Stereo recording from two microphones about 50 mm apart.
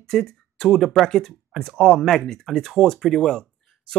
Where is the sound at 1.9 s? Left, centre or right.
Centre.